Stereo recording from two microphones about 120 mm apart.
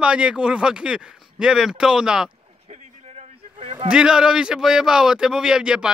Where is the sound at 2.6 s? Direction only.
65° right (ahead or behind).